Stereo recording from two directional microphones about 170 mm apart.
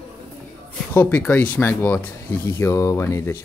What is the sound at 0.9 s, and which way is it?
Speech, 10° left (ahead or behind).